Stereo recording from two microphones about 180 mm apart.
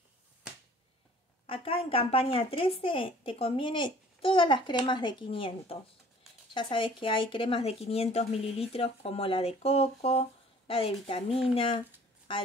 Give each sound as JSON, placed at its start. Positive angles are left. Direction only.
{"t": 1.5, "sound": "speech", "side_deg": 30}